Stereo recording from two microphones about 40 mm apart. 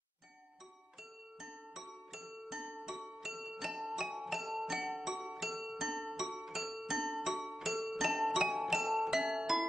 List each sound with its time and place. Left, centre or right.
1.4 s music: centre
3.7 s music: centre